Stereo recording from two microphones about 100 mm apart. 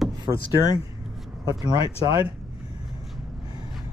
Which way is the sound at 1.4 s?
40° right (ahead or behind).